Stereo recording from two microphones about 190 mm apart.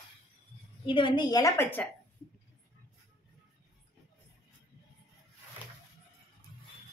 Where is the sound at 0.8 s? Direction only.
25° left (ahead or behind).